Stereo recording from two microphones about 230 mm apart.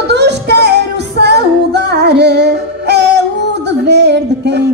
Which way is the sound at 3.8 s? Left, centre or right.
Right.